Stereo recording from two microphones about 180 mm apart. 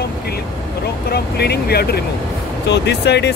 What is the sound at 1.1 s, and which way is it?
Speech, 65° left (ahead or behind).